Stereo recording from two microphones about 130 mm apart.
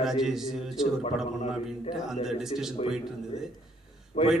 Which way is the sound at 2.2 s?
5° right (ahead or behind).